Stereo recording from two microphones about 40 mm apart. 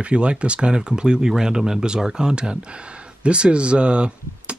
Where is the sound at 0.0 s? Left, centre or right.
Right.